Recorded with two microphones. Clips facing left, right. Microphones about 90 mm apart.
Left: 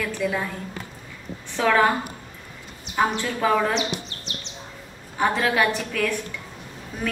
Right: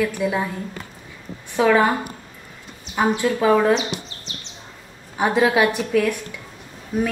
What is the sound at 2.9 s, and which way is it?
Speech, 10° right (ahead or behind).